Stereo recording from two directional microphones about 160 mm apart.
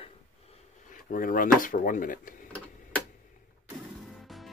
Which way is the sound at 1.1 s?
60° left (ahead or behind).